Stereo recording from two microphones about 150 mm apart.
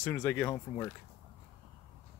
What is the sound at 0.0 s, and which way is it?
Speech, 15° left (ahead or behind).